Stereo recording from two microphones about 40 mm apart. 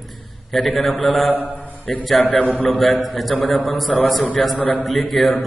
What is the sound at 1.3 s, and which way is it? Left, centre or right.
Speech, right.